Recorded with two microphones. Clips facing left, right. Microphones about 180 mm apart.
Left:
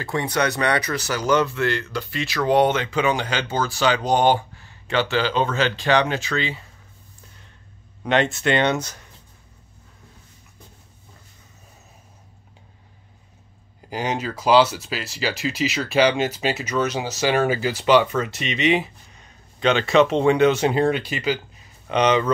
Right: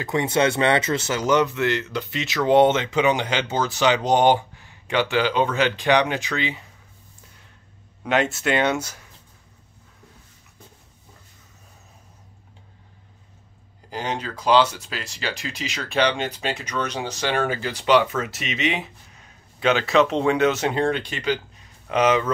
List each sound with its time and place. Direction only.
0.0 s speech: 20° right (ahead or behind)
8.0 s speech: 5° right (ahead or behind)
13.8 s speech: 10° left (ahead or behind)
21.8 s speech: 5° right (ahead or behind)